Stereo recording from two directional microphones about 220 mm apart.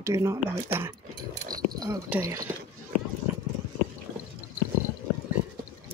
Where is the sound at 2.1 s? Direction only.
15° right (ahead or behind).